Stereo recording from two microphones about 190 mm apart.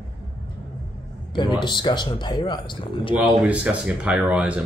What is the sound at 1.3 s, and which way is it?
Speech, 25° left (ahead or behind).